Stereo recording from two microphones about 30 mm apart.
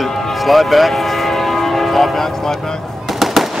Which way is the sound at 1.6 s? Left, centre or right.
Centre.